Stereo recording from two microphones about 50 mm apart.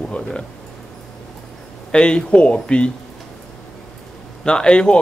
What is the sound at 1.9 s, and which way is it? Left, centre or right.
Speech, centre.